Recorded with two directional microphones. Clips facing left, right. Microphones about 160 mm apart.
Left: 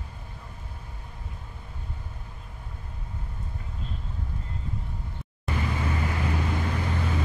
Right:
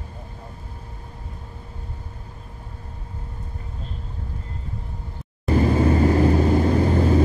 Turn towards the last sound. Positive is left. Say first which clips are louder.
# right 12 dB
turn(degrees=-35)  # may be behind; listen again after turning